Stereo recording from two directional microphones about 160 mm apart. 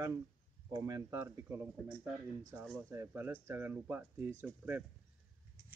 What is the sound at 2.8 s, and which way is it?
Speech, 15° right (ahead or behind).